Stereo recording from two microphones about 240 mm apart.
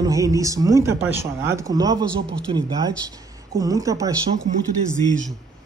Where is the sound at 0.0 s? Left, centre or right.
Centre.